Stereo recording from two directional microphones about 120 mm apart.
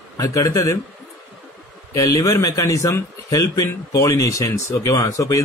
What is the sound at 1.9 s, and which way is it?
Speech, 25° left (ahead or behind).